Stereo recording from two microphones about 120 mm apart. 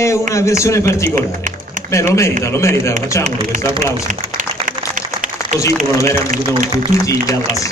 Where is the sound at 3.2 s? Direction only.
90° right.